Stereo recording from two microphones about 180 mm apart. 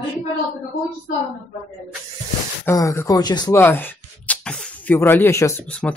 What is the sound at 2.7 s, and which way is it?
Speech, 15° left (ahead or behind).